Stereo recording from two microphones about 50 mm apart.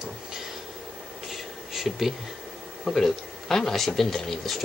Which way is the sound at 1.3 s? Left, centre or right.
Centre.